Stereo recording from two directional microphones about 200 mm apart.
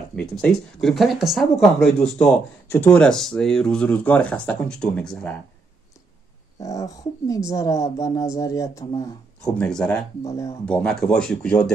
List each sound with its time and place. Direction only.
0.1 s speech: 5° left (ahead or behind)
6.6 s speech: 15° left (ahead or behind)
9.4 s speech: 5° left (ahead or behind)